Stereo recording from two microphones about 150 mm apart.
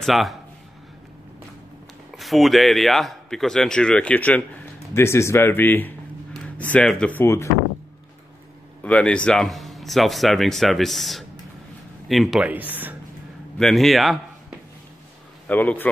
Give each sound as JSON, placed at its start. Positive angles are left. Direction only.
{"t": 0.0, "sound": "speech", "side_deg": 0}
{"t": 2.1, "sound": "speech", "side_deg": 0}
{"t": 8.8, "sound": "speech", "side_deg": 10}
{"t": 13.6, "sound": "speech", "side_deg": 0}
{"t": 15.4, "sound": "speech", "side_deg": 10}